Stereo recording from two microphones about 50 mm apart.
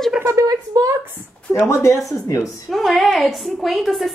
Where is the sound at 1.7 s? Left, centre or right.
Left.